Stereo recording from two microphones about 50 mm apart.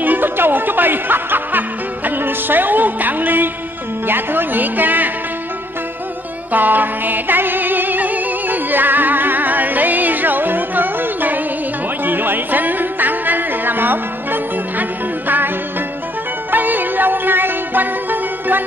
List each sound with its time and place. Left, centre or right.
0.0 s speech: right
2.0 s music: right
4.1 s speech: right
6.5 s music: right
16.5 s music: right